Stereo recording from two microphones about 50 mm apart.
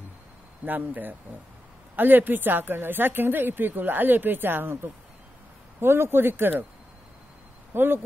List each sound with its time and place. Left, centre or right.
0.7 s a woman's voice: right
5.8 s a woman's voice: right
7.7 s speech: right